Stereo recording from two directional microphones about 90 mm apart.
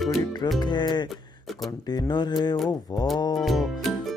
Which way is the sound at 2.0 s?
50° left (ahead or behind).